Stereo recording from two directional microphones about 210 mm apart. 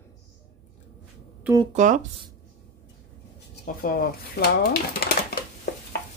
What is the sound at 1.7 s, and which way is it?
Speech, 35° right (ahead or behind).